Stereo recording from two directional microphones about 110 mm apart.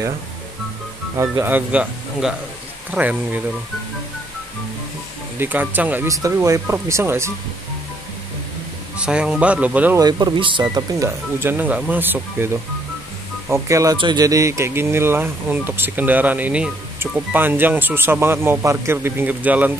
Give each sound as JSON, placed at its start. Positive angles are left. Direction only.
{"t": 1.1, "sound": "speech", "side_deg": -25}
{"t": 5.4, "sound": "speech", "side_deg": -15}
{"t": 6.0, "sound": "speech", "side_deg": -30}
{"t": 8.9, "sound": "speech", "side_deg": -10}
{"t": 9.9, "sound": "speech", "side_deg": -40}
{"t": 13.5, "sound": "speech", "side_deg": -30}
{"t": 13.9, "sound": "speech", "side_deg": -40}